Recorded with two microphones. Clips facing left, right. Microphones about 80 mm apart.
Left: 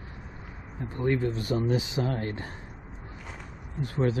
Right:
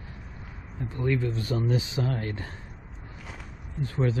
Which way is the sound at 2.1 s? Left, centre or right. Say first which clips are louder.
Left 1 dB; left.